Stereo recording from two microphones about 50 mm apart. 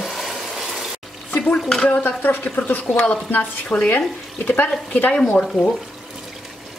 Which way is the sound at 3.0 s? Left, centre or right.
Left.